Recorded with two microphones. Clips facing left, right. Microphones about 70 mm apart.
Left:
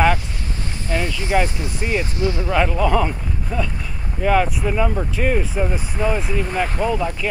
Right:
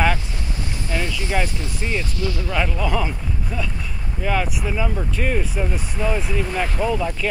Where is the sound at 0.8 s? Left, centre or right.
Left.